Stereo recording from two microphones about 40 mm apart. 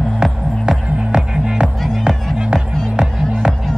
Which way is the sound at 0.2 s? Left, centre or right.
Centre.